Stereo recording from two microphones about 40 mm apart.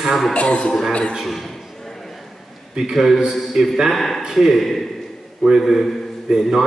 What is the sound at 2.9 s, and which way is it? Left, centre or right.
A man's voice, centre.